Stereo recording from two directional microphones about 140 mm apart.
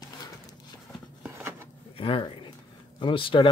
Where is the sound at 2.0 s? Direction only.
40° left (ahead or behind).